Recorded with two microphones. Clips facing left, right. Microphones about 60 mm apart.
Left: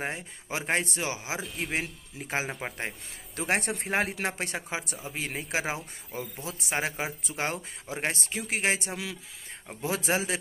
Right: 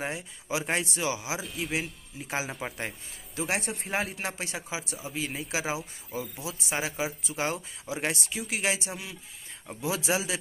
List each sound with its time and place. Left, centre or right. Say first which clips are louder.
0.0 s speech: even; left
1.4 s speech: even; centre
1.7 s speech: even; left
5.8 s speech: right 2 dB; centre
6.4 s speech: left 3 dB; left